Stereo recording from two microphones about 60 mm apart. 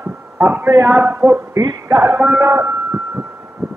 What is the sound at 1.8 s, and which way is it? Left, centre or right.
Music, right.